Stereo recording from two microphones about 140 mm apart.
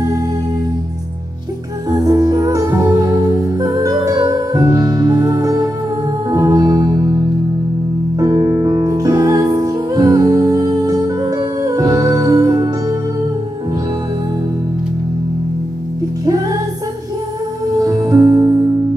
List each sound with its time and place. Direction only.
1.9 s music: 25° right (ahead or behind)
17.7 s music: 25° right (ahead or behind)